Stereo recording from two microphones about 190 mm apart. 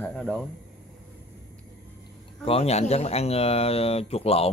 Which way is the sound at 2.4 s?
30° left (ahead or behind).